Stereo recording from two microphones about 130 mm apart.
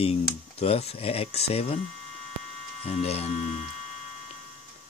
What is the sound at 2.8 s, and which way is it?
Speech, 50° left (ahead or behind).